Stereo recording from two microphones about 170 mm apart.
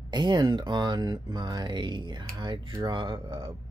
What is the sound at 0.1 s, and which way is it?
Speech, 25° right (ahead or behind).